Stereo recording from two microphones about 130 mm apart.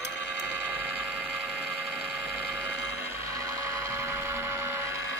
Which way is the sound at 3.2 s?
25° right (ahead or behind).